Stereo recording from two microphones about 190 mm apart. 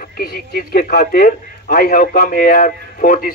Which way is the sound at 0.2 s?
50° left (ahead or behind).